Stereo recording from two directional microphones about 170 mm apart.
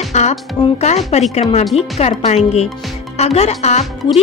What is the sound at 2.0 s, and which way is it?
Speech, 40° left (ahead or behind).